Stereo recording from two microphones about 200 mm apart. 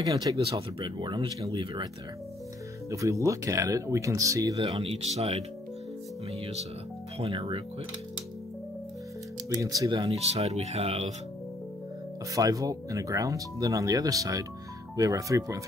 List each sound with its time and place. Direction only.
0.0 s speech: 20° right (ahead or behind)
0.5 s speech: 30° right (ahead or behind)
2.9 s speech: 15° right (ahead or behind)
4.6 s speech: 30° right (ahead or behind)
7.2 s speech: 25° right (ahead or behind)
9.5 s speech: 15° right (ahead or behind)
12.4 s speech: 15° right (ahead or behind)